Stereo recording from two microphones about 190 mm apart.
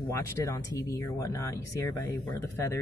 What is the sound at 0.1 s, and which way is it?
Speech, 15° left (ahead or behind).